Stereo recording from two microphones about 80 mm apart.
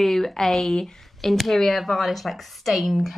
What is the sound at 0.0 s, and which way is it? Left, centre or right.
Speech, centre.